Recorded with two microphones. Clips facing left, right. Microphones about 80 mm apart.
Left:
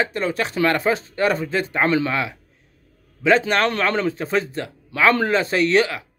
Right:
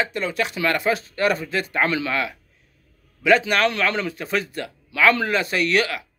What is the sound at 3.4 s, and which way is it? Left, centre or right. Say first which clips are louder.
Speech: left 1 dB; left.